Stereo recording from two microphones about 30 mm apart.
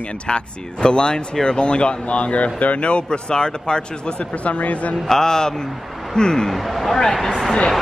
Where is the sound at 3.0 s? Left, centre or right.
Left.